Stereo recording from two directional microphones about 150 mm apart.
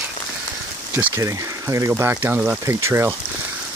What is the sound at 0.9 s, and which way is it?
Speech, 20° right (ahead or behind).